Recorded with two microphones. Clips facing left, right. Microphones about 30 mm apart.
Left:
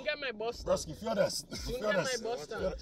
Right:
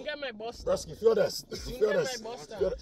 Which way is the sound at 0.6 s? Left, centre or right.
Centre.